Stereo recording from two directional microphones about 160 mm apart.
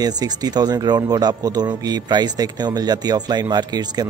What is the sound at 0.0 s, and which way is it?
Speech, 25° right (ahead or behind).